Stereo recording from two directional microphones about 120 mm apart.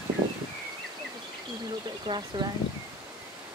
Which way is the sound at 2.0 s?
40° right (ahead or behind).